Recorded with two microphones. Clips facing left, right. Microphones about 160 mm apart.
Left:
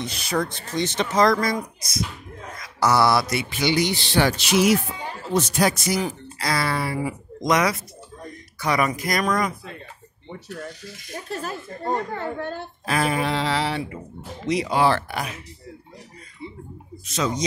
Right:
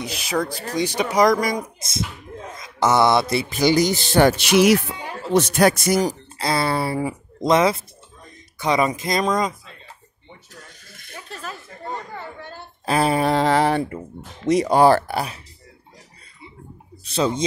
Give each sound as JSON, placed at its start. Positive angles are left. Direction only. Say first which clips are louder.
{"t": 0.0, "sound": "speech", "louder": "right 1 dB", "side_deg": 0}
{"t": 0.7, "sound": "speech", "louder": "right 2 dB", "side_deg": -15}
{"t": 3.4, "sound": "a sound", "louder": "right 4 dB", "side_deg": -40}
{"t": 4.4, "sound": "speech", "louder": "right 4 dB", "side_deg": -70}
{"t": 6.3, "sound": "speech", "louder": "right 2 dB", "side_deg": -25}
{"t": 11.1, "sound": "a sound", "louder": "left 4 dB", "side_deg": 40}
{"t": 11.8, "sound": "speech", "louder": "left 6 dB", "side_deg": 55}
{"t": 12.8, "sound": "a sound", "louder": "right 4 dB", "side_deg": -30}
{"t": 14.5, "sound": "speech", "louder": "right 6 dB", "side_deg": -45}
{"t": 17.0, "sound": "speech", "louder": "right 4 dB", "side_deg": -30}